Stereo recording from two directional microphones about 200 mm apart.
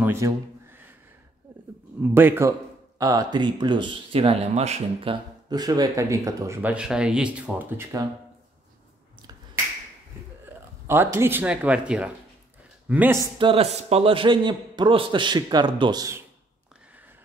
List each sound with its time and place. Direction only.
0.0 s a sound: 10° right (ahead or behind)
2.0 s a man's voice: 10° right (ahead or behind); by 5.1 s 30° right (ahead or behind)
5.5 s speech: 20° right (ahead or behind)
10.9 s a man's voice: 10° right (ahead or behind)